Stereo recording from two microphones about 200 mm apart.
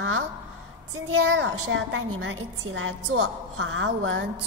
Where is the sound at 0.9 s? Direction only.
75° right (ahead or behind).